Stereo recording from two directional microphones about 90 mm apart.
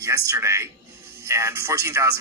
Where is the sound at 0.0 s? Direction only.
35° right (ahead or behind).